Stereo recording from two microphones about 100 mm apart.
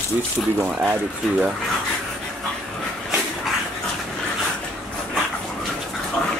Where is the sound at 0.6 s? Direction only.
20° right (ahead or behind).